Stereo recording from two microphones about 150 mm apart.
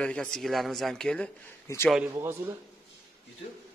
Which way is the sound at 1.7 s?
20° left (ahead or behind).